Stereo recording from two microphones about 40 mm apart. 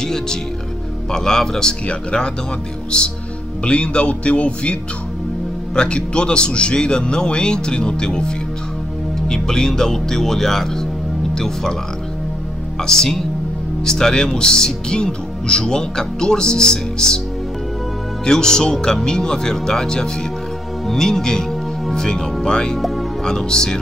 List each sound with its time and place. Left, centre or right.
0.0 s speech: centre
3.6 s speech: left
5.8 s speech: left
12.8 s speech: centre
18.2 s speech: centre
22.8 s speech: centre
23.2 s speech: centre